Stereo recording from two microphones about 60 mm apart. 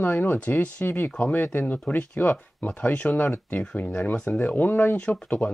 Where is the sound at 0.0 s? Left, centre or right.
Left.